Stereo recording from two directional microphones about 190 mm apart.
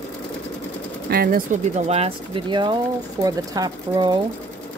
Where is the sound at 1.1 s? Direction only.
50° right (ahead or behind).